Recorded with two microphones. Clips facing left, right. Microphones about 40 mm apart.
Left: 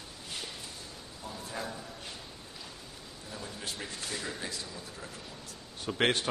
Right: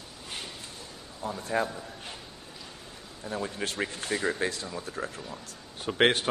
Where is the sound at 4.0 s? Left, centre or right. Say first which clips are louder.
Right 10 dB; right.